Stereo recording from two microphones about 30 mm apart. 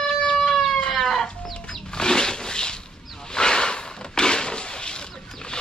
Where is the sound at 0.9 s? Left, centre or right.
Centre.